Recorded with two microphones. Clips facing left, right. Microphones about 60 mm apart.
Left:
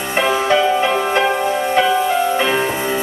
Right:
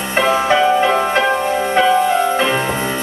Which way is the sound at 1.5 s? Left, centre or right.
Centre.